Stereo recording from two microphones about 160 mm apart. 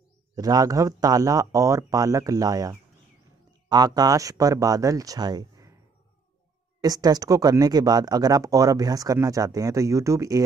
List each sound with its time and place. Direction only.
0.4 s speech: 25° right (ahead or behind)
6.8 s speech: 25° right (ahead or behind)